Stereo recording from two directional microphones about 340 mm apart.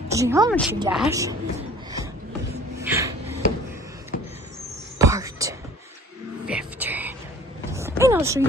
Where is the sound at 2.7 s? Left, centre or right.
Centre.